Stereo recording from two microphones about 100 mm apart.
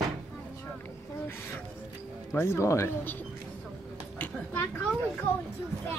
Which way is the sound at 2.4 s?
25° left (ahead or behind).